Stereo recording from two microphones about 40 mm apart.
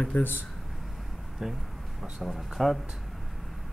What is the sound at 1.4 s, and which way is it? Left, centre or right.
Speech, centre.